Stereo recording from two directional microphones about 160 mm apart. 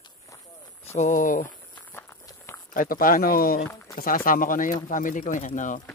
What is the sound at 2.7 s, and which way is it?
Speech, 60° left (ahead or behind).